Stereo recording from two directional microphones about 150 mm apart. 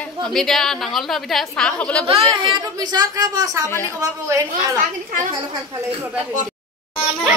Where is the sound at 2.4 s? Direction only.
30° right (ahead or behind).